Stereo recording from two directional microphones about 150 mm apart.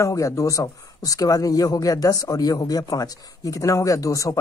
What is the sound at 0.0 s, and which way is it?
A man's voice, 20° left (ahead or behind).